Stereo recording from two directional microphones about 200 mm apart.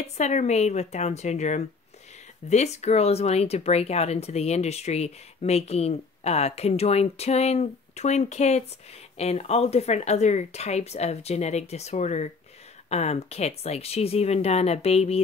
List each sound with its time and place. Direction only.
0.0 s speech: 35° left (ahead or behind)